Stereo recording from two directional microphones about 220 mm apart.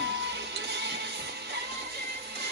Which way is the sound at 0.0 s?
50° right (ahead or behind).